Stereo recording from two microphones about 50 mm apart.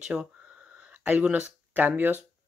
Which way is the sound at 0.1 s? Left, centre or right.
Centre.